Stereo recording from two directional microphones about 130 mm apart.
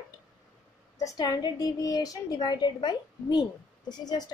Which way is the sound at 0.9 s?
30° left (ahead or behind).